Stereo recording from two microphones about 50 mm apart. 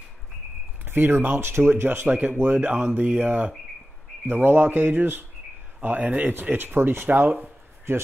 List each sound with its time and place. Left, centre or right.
0.8 s speech: right
2.0 s speech: right
4.3 s speech: right
6.6 s speech: right
7.1 s speech: right
7.9 s speech: right